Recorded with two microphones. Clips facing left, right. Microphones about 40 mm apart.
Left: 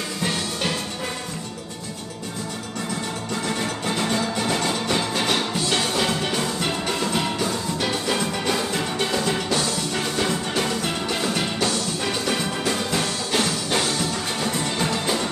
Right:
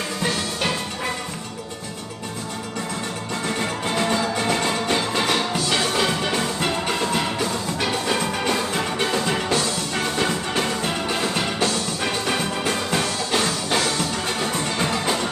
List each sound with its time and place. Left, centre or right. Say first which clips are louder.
3.8 s music: right 3 dB; right